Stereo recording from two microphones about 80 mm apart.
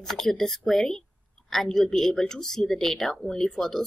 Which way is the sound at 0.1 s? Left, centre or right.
Centre.